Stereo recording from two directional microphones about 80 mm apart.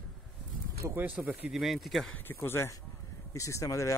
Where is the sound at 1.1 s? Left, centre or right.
Centre.